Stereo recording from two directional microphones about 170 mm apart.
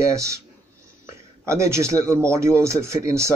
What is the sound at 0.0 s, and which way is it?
Speech, 15° right (ahead or behind).